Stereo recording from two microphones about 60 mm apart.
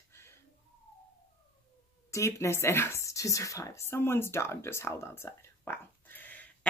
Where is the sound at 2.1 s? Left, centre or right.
Left.